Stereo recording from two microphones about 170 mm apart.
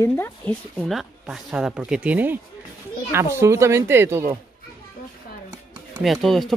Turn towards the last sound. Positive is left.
turn(degrees=0)  # may be behind; listen again after turning